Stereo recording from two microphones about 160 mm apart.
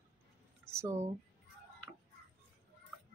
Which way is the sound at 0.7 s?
15° right (ahead or behind).